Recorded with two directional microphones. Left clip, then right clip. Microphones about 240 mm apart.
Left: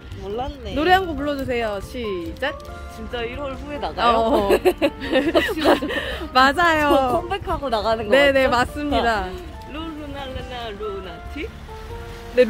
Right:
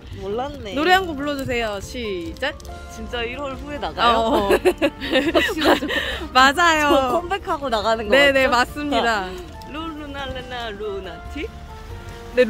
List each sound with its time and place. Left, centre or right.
0.7 s speech: centre
3.1 s speech: centre
4.0 s speech: centre
4.3 s speech: centre
5.0 s speech: centre
7.2 s speech: centre
8.1 s speech: centre
9.8 s a sound: centre